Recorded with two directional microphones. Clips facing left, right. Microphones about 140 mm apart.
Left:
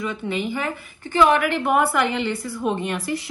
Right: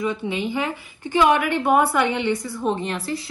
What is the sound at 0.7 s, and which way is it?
Speech, 20° right (ahead or behind).